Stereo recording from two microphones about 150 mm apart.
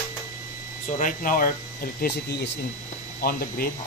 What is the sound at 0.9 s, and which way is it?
Speech, 60° left (ahead or behind).